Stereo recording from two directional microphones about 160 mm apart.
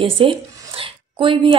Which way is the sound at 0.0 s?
35° right (ahead or behind).